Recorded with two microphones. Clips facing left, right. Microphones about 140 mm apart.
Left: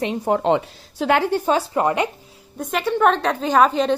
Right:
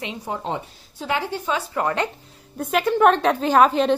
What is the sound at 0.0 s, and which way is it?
A woman's voice, 50° left (ahead or behind).